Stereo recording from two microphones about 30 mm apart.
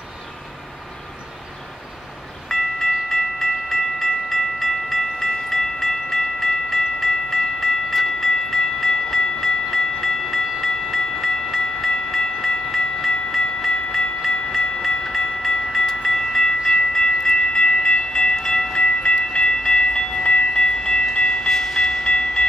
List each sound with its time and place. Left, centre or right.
2.4 s train: centre
16.9 s train: centre
18.8 s train: left
20.2 s train: left
20.6 s train: left
22.0 s train: left